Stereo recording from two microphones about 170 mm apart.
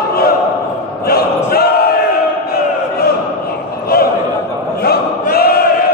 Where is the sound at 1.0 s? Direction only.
65° left (ahead or behind).